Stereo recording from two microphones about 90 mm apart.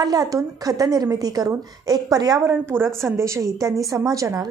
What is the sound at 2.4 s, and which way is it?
A woman's voice, 25° right (ahead or behind).